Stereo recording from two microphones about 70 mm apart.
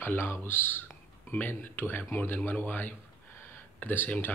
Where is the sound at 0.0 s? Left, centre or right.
Left.